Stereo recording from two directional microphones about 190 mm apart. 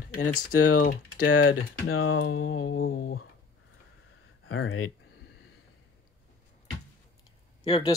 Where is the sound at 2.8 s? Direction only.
55° left (ahead or behind).